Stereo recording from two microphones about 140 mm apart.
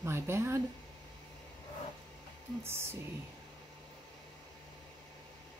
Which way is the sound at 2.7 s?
15° right (ahead or behind).